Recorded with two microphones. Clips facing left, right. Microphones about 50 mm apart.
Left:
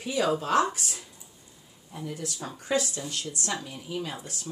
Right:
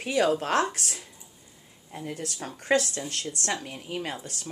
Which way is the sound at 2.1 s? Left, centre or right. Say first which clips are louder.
Even; right.